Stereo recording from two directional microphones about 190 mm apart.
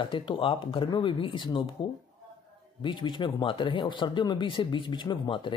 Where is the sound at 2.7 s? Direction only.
25° left (ahead or behind).